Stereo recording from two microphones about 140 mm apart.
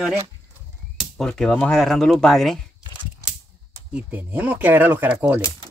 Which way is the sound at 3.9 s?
15° right (ahead or behind).